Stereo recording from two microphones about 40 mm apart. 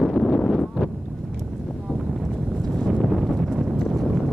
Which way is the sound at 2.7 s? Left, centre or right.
Centre.